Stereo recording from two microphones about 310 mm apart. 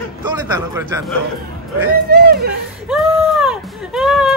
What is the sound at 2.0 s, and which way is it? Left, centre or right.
Speech, right.